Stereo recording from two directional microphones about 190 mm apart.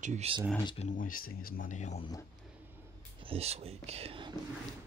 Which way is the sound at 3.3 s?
30° right (ahead or behind).